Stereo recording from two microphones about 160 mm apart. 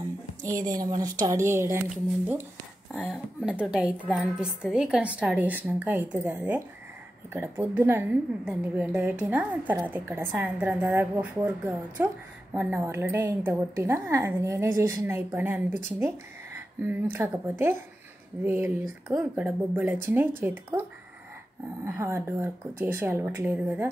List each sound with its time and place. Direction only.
0.7 s a woman's voice: 20° right (ahead or behind)
2.9 s a woman's voice: centre (ahead or behind)
21.8 s a woman's voice: 15° right (ahead or behind)